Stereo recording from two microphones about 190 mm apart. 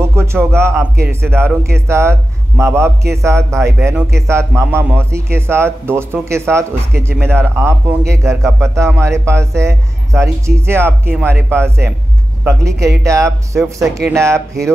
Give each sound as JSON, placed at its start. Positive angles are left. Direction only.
{"t": 0.1, "sound": "music", "side_deg": -15}
{"t": 1.2, "sound": "speech", "side_deg": -15}